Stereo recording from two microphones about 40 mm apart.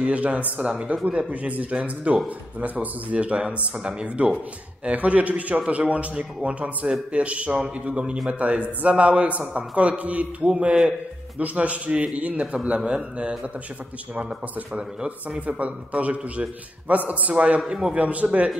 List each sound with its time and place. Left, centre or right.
0.0 s a man's voice: right
4.9 s a man's voice: right
15.0 s a man's voice: right
17.6 s a man's voice: centre
17.9 s a man's voice: right